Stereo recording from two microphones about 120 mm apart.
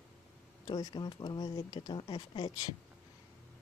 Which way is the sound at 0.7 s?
40° left (ahead or behind).